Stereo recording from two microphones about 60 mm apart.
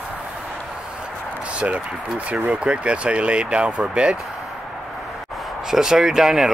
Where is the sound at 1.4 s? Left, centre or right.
Right.